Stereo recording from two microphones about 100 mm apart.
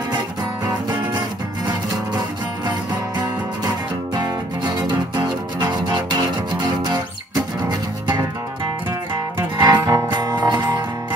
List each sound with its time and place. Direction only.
0.7 s music: 45° right (ahead or behind)
9.1 s music: 45° right (ahead or behind)